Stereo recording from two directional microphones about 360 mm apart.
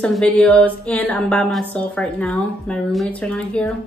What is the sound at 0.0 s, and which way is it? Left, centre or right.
Speech, centre.